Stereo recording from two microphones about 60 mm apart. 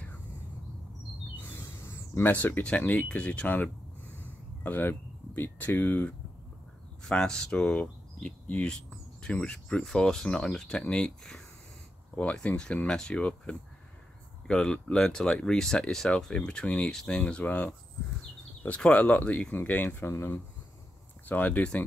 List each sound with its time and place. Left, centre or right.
1.6 s a sound: left
2.2 s speech: left
7.1 s speech: centre
12.2 s speech: left
17.5 s speech: left
18.8 s speech: left
20.1 s speech: left
21.3 s speech: left